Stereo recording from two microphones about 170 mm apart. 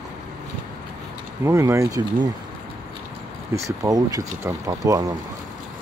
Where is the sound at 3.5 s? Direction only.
20° right (ahead or behind).